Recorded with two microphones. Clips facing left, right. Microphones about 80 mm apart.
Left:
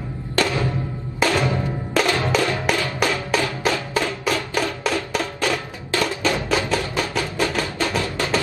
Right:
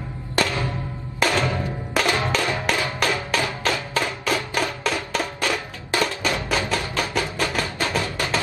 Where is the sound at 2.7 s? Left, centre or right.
Centre.